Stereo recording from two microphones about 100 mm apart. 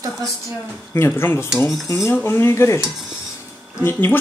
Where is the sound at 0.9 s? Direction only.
25° left (ahead or behind).